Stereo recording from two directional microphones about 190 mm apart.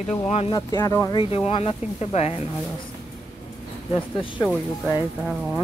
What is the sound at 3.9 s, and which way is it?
Speech, 25° left (ahead or behind).